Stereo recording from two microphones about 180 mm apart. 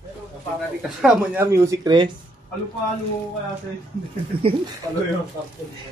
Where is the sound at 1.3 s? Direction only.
15° right (ahead or behind).